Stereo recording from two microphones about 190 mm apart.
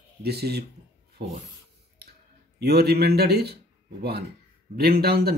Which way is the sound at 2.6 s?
55° right (ahead or behind).